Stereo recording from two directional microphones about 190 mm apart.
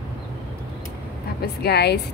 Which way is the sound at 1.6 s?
60° left (ahead or behind).